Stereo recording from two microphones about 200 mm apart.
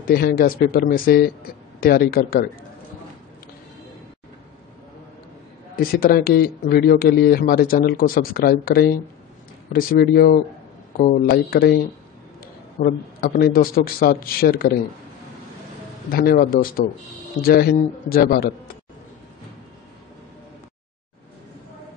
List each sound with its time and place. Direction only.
0.0 s speech: 45° left (ahead or behind)
5.8 s speech: 45° left (ahead or behind)
12.8 s speech: 45° left (ahead or behind)
16.1 s speech: 50° left (ahead or behind)